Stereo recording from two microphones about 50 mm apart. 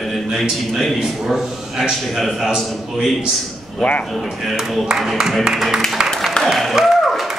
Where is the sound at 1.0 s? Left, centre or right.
Centre.